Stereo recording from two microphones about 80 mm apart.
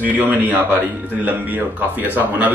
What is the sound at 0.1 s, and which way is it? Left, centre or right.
Speech, right.